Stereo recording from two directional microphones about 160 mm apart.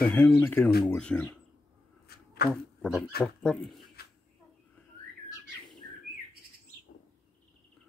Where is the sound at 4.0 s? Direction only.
80° left.